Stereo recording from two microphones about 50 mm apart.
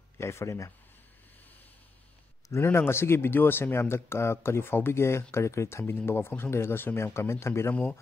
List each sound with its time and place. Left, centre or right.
0.2 s a man's voice: left
2.5 s speech: left
3.9 s speech: left
6.0 s speech: left